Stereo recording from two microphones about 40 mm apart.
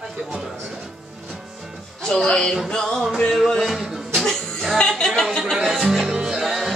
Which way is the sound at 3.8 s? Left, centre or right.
Centre.